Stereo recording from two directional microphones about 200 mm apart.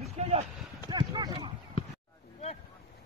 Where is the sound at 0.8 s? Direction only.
20° right (ahead or behind).